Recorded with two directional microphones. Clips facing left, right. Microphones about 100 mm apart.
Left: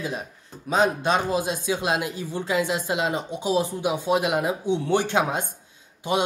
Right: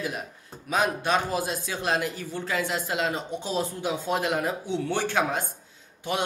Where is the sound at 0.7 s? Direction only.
25° left (ahead or behind).